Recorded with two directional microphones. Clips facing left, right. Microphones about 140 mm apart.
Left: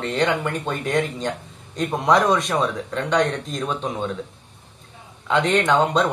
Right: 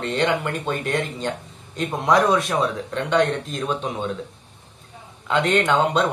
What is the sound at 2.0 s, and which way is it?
Speech, centre (ahead or behind).